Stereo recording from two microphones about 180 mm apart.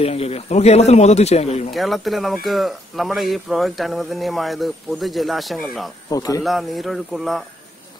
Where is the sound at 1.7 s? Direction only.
Centre (ahead or behind).